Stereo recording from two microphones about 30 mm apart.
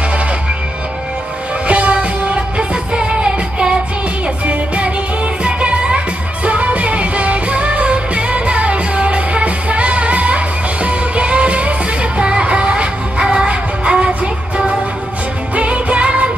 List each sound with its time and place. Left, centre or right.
1.7 s music: right
15.5 s music of asia: right